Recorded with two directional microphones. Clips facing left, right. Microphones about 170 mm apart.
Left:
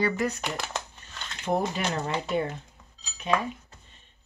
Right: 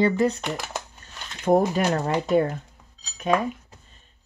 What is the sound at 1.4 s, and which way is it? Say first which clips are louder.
Speech: right 8 dB; 45° right (ahead or behind).